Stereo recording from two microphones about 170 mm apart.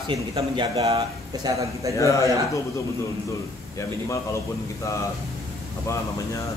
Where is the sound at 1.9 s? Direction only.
20° left (ahead or behind).